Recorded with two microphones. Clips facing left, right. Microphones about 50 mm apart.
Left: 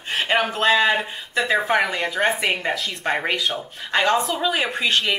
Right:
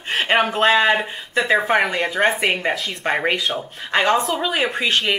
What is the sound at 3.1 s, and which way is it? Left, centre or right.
Speech, centre.